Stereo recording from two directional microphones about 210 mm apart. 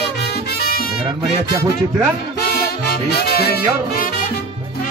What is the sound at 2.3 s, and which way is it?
Music, 50° left (ahead or behind).